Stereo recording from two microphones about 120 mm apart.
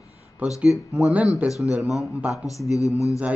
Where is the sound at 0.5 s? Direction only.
5° right (ahead or behind).